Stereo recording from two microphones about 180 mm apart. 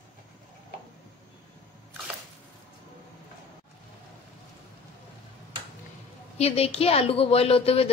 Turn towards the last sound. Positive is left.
turn(degrees=35)  # may be behind; listen again after turning